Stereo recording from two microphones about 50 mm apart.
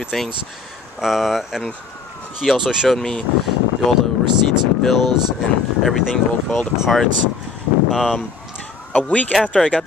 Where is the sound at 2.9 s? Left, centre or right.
Centre.